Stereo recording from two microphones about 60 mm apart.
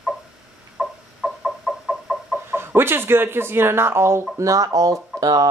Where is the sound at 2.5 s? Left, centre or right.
Right.